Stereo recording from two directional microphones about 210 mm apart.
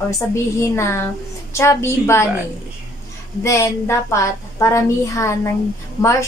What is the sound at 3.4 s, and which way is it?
A woman's voice, 15° left (ahead or behind).